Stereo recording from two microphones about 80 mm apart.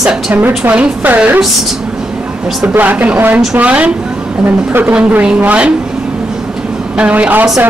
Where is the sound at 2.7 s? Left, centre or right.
Right.